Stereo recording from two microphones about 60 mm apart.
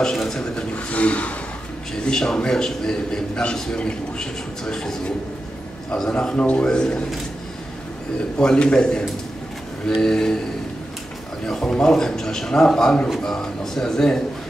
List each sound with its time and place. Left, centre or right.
0.0 s speech: centre
0.7 s vehicle: left
2.0 s a man's voice: centre
8.4 s a man's voice: centre
11.4 s a man's voice: centre